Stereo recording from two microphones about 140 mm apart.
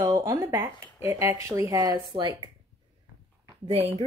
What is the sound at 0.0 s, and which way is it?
Speech, 20° right (ahead or behind).